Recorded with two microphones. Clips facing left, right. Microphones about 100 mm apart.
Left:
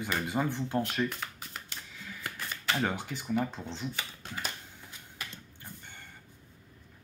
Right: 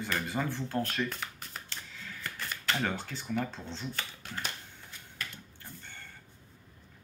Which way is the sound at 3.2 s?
10° left (ahead or behind).